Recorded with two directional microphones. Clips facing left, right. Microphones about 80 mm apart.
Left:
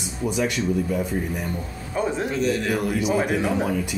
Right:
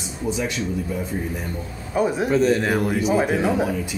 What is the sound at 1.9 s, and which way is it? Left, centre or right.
Speech, centre.